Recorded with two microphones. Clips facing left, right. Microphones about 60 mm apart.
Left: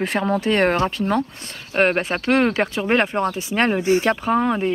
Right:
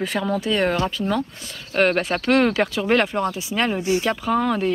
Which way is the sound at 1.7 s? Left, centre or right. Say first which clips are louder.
Even; left.